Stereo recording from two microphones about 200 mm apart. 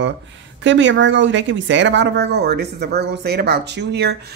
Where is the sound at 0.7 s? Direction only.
65° right (ahead or behind).